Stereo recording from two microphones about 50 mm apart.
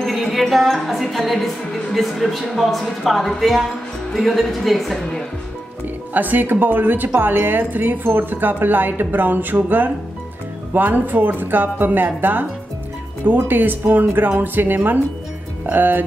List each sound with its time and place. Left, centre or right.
0.0 s a woman's voice: centre
6.1 s speech: right
13.5 s speech: right